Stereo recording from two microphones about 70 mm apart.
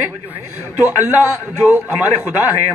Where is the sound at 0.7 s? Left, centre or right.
Right.